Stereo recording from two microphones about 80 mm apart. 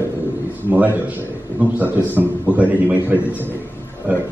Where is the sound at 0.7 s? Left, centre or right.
Right.